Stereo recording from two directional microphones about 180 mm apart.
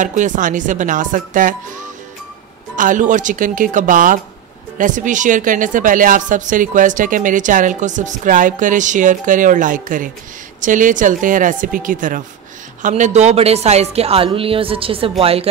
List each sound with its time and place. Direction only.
0.0 s speech: 45° right (ahead or behind)
2.7 s speech: 45° right (ahead or behind)